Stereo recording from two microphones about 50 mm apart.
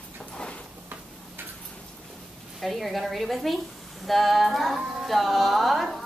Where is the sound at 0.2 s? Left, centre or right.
Centre.